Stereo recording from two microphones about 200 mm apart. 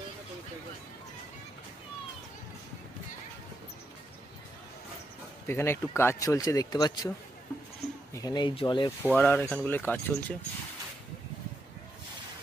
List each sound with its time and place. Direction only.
5.5 s speech: 10° left (ahead or behind)
8.1 s speech: 20° left (ahead or behind)
9.0 s speech: 10° left (ahead or behind)